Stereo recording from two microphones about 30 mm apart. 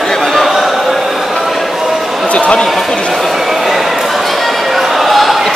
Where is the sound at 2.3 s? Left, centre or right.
Left.